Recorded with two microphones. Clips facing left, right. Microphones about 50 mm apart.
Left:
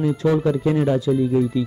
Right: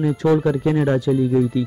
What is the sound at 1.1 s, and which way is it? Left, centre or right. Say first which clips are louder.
Speech: right 1 dB; centre.